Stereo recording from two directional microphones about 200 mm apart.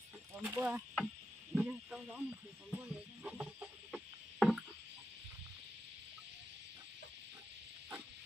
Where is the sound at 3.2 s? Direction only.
5° right (ahead or behind).